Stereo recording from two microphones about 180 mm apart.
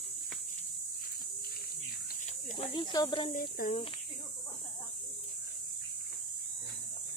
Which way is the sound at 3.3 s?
50° left (ahead or behind).